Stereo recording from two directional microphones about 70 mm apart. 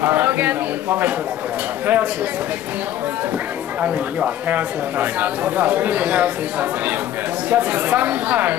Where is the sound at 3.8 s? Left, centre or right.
Right.